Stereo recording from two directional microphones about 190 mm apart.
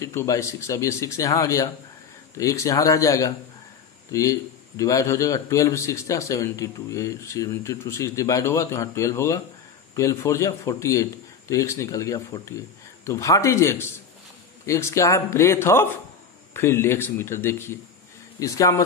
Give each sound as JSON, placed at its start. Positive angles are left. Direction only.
{"t": 0.0, "sound": "a man's voice", "side_deg": 15}